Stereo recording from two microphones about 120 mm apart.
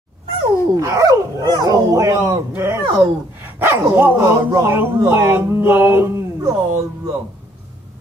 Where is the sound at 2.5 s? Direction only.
20° right (ahead or behind).